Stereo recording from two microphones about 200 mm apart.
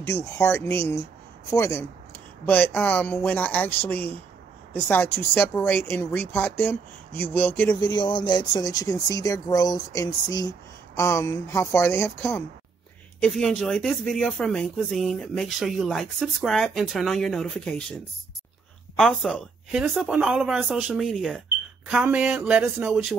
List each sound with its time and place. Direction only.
0.0 s speech: 15° left (ahead or behind)
8.0 s speech: 20° left (ahead or behind); by 17.8 s 5° left (ahead or behind)
18.9 s speech: centre (ahead or behind)